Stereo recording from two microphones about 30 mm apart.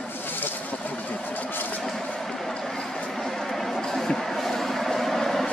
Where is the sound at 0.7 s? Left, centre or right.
Left.